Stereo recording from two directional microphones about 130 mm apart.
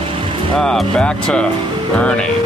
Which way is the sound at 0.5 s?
5° left (ahead or behind).